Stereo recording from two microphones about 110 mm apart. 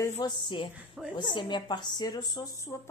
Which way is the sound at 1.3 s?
45° left (ahead or behind).